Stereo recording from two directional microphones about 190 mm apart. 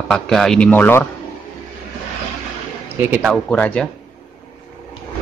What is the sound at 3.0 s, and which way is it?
Speech, centre (ahead or behind).